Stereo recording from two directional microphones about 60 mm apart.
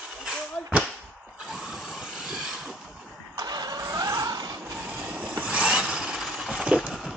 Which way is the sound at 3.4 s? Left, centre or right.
Right.